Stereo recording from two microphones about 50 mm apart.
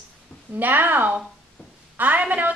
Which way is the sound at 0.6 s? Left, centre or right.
Right.